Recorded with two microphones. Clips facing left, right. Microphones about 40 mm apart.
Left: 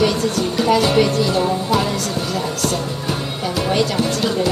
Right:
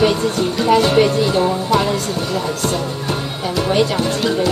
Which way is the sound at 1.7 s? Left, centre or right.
Centre.